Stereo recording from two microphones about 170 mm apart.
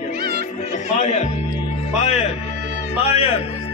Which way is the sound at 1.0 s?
45° left (ahead or behind).